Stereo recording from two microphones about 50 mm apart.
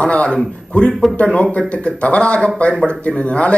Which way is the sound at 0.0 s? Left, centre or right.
Left.